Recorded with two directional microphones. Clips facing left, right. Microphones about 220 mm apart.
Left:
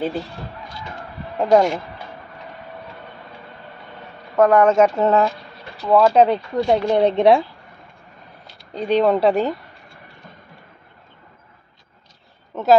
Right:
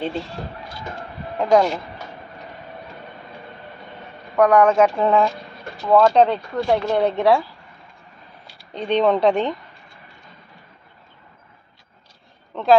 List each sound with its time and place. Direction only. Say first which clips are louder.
1.4 s speech: left 1 dB; 10° left (ahead or behind)
4.4 s speech: left 1 dB; 5° left (ahead or behind)
8.5 s speech: left 2 dB; 5° left (ahead or behind)
12.5 s a sound: left 2 dB; 5° left (ahead or behind)